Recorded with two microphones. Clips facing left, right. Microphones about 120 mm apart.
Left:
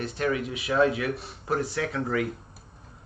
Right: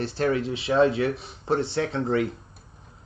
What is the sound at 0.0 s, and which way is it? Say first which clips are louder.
Speech: right 3 dB; 30° right (ahead or behind).